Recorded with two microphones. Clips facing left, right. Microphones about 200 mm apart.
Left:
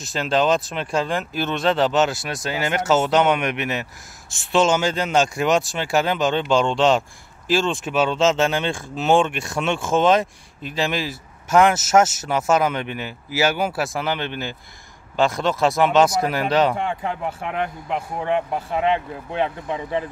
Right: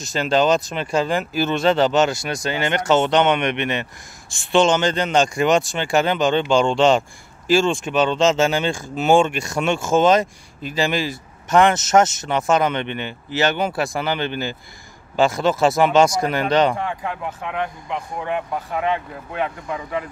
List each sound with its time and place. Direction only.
0.0 s speech: centre (ahead or behind)
16.7 s speech: 25° left (ahead or behind)